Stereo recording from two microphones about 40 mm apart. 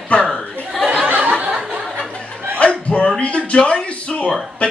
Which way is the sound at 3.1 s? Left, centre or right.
Left.